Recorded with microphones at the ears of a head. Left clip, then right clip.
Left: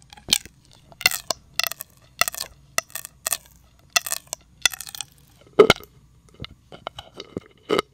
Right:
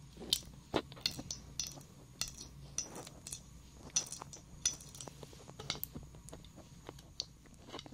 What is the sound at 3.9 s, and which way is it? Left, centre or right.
Crushing, left.